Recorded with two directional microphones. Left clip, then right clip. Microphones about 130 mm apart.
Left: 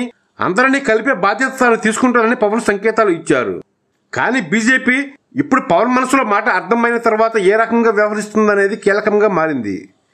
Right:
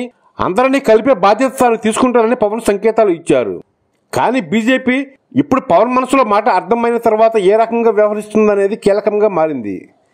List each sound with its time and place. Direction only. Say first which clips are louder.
0.0 s a man's voice: right 1 dB; 35° right (ahead or behind)